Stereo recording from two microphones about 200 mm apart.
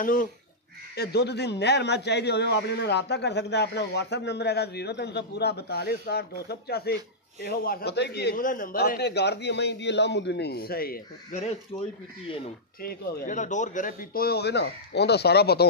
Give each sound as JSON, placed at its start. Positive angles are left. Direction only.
{"t": 0.0, "sound": "speech", "side_deg": 45}
{"t": 0.9, "sound": "a man's voice", "side_deg": 55}
{"t": 11.7, "sound": "speech", "side_deg": 20}
{"t": 12.8, "sound": "speech", "side_deg": 50}